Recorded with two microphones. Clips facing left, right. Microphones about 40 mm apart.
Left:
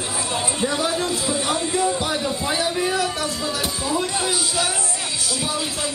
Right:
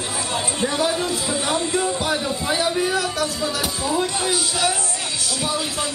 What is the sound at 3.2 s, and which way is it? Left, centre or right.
Music, centre.